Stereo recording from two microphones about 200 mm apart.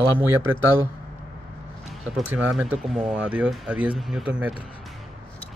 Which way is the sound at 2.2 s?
5° right (ahead or behind).